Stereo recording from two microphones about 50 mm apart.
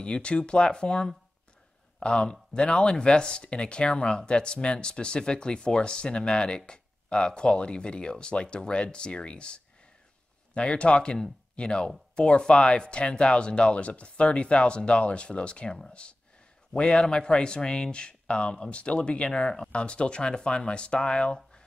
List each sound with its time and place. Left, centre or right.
0.0 s speech: left